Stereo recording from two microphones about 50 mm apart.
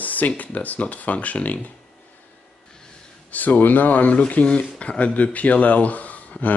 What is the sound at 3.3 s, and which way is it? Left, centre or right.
Speech, left.